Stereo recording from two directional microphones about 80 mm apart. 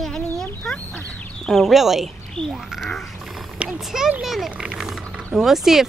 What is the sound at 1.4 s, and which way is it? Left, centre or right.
Speech, centre.